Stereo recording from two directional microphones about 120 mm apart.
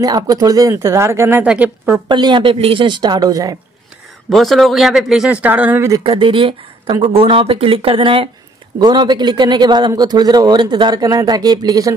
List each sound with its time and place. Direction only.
0.0 s speech: 30° right (ahead or behind)
1.4 s a woman's voice: 10° right (ahead or behind)
2.0 s a man's voice: 40° right (ahead or behind)
4.3 s speech: centre (ahead or behind); by 6.0 s 20° right (ahead or behind)
6.0 s speech: 45° right (ahead or behind)
8.7 s a man's voice: 40° right (ahead or behind)